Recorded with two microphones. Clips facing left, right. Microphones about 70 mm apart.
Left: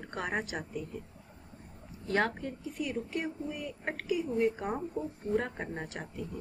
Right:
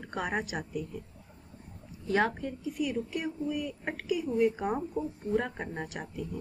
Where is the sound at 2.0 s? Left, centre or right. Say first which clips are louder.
Right 2 dB; centre.